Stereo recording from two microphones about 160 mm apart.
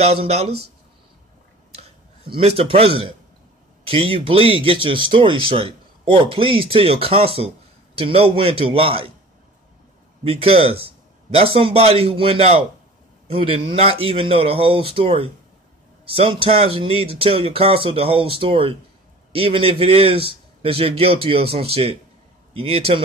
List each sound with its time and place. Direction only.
0.0 s speech: 40° right (ahead or behind)
1.7 s a sound: 35° right (ahead or behind)
3.8 s speech: 35° right (ahead or behind)
10.2 s a man's voice: 35° right (ahead or behind)